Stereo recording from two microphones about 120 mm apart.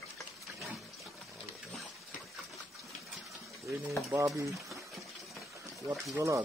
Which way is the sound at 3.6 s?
25° right (ahead or behind).